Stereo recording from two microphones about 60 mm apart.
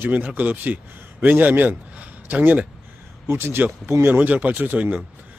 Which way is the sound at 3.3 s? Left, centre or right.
Right.